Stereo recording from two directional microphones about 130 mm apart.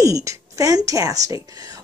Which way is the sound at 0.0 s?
25° right (ahead or behind).